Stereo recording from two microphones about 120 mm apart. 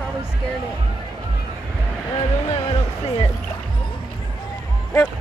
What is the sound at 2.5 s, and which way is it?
Music, 50° left (ahead or behind).